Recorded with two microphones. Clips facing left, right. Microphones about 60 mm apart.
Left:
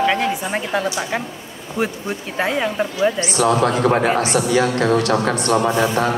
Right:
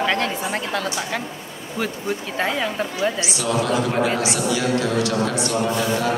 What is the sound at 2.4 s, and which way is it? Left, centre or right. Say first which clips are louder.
Speech: left 5 dB; centre.